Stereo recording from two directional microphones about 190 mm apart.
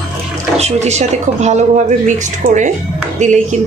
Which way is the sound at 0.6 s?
35° right (ahead or behind).